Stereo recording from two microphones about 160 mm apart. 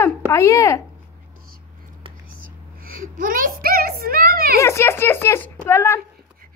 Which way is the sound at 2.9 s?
60° right (ahead or behind).